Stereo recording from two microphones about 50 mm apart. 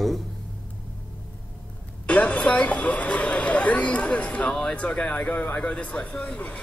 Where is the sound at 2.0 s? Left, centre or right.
Left.